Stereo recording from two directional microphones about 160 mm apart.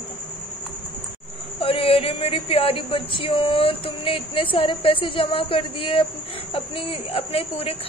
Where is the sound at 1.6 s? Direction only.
35° left (ahead or behind).